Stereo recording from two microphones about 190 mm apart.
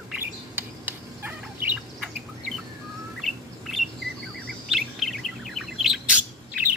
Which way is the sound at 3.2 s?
Centre (ahead or behind).